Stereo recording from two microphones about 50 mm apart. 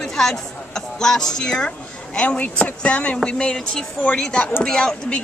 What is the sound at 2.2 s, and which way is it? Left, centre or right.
A woman's voice, left.